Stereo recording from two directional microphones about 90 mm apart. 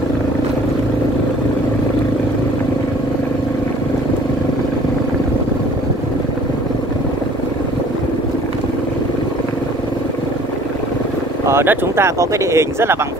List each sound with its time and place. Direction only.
11.4 s speech: 25° right (ahead or behind)